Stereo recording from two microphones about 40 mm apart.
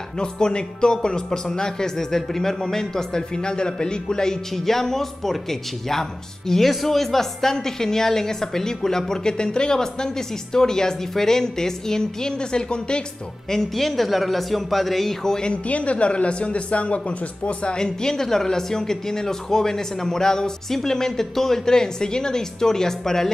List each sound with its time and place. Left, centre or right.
0.2 s speech: left
13.5 s a man's voice: centre
15.5 s a woman's voice: left; by 23.3 s centre